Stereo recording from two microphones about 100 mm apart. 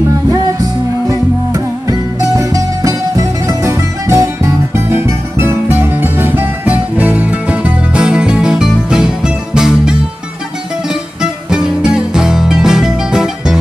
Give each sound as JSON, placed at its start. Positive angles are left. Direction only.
{"t": 0.3, "sound": "music", "side_deg": -40}
{"t": 11.5, "sound": "music", "side_deg": -5}